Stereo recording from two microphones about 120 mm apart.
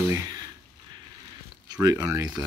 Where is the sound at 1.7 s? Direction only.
30° right (ahead or behind).